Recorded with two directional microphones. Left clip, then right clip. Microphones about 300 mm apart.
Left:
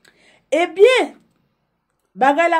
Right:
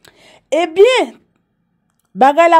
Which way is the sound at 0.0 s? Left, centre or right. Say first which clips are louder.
Right 7 dB; right.